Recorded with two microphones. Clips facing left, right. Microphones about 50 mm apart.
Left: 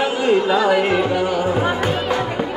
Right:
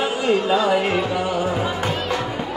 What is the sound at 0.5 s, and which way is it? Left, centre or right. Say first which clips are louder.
Speech: left 2 dB; left.